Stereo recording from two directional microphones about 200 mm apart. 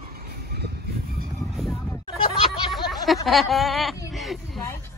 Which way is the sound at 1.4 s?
Centre (ahead or behind).